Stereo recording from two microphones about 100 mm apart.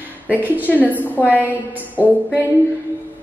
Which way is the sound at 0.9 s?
15° left (ahead or behind).